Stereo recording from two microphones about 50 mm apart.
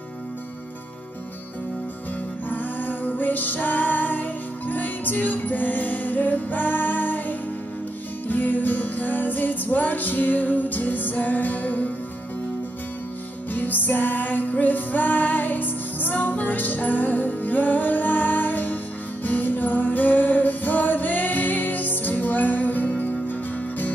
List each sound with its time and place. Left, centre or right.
2.5 s music: left
13.5 s music: left